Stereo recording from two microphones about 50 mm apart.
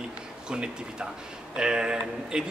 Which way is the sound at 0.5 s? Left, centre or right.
Centre.